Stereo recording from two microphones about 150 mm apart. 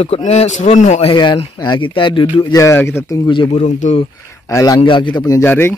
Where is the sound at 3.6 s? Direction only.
55° left (ahead or behind).